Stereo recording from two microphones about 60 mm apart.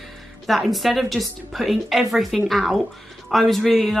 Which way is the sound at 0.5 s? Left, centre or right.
Centre.